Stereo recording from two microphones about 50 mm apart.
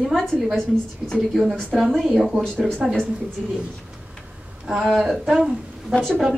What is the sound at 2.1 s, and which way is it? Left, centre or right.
Speech, centre.